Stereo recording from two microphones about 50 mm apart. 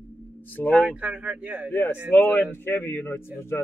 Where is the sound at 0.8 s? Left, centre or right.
Right.